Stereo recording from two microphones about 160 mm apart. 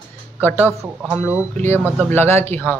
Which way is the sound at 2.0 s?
15° left (ahead or behind).